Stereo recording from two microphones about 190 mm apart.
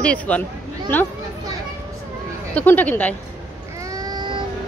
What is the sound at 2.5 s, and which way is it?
Speech, 10° left (ahead or behind).